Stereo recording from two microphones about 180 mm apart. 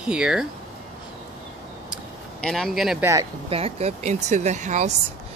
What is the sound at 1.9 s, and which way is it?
Vehicle, 5° left (ahead or behind).